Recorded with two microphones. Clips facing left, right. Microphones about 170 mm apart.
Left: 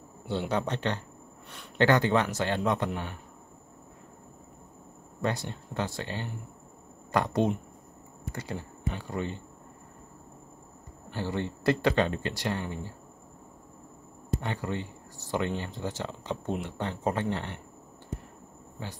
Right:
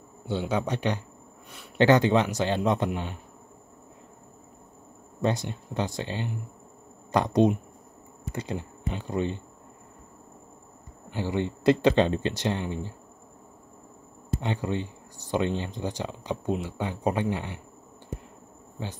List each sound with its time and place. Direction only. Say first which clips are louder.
0.3 s speech: right 2 dB; 5° right (ahead or behind)
5.2 s speech: right 4 dB; 20° right (ahead or behind)
11.1 s speech: right 4 dB; 15° right (ahead or behind)
14.4 s speech: right 7 dB; 20° right (ahead or behind)